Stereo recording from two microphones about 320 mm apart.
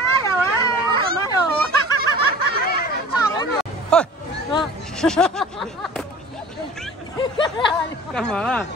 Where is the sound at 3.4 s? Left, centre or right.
Centre.